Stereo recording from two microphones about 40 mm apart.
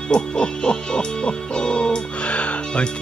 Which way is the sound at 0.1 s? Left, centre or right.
Left.